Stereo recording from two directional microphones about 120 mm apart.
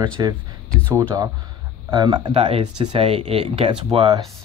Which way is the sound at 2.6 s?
40° right (ahead or behind).